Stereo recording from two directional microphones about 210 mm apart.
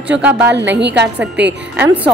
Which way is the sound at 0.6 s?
55° right (ahead or behind).